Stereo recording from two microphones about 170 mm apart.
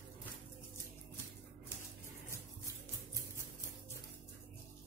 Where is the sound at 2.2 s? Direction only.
15° left (ahead or behind).